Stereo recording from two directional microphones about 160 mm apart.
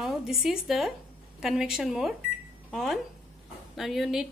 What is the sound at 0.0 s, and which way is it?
A woman's voice, centre (ahead or behind).